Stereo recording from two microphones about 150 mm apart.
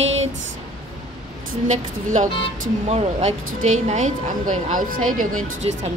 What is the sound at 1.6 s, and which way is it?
Speech, 55° right (ahead or behind).